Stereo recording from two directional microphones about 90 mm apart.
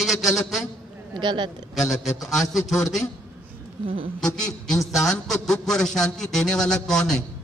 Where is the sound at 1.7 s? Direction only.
Centre (ahead or behind).